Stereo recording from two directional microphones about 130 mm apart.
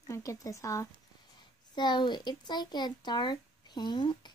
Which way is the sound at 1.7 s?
35° left (ahead or behind).